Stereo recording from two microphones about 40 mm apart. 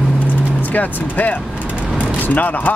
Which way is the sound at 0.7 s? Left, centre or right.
Left.